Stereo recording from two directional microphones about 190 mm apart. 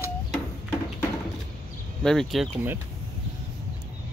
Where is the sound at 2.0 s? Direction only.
Centre (ahead or behind).